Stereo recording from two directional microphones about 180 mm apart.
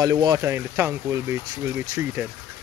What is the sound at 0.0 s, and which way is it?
Speech, 20° right (ahead or behind).